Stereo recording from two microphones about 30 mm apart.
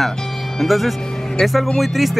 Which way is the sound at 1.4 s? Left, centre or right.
Left.